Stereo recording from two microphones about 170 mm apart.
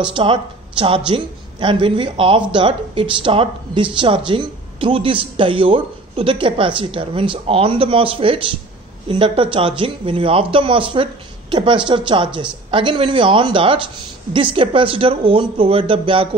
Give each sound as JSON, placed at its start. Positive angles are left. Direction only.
{"t": 0.1, "sound": "a woman's voice", "side_deg": -30}